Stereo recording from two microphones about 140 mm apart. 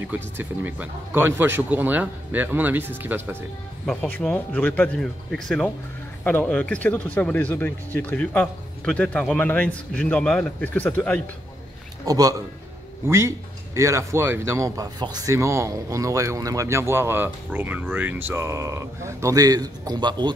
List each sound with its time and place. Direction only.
0.0 s speech: 15° right (ahead or behind)
3.8 s speech: 5° left (ahead or behind)
12.1 s speech: 25° right (ahead or behind)